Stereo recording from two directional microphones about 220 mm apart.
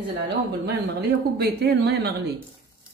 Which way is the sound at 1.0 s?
50° right (ahead or behind).